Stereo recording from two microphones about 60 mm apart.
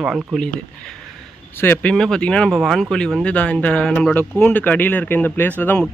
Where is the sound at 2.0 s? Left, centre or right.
Centre.